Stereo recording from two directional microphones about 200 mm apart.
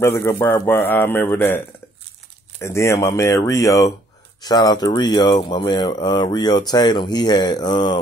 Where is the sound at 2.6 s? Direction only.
15° left (ahead or behind).